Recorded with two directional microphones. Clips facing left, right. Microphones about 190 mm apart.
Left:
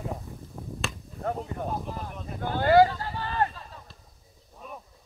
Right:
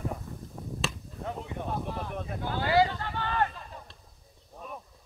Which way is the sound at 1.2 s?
40° left (ahead or behind).